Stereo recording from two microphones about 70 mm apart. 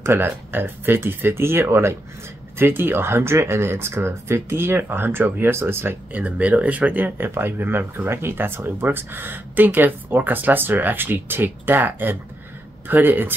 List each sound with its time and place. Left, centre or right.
0.0 s speech: right
6.1 s speech: right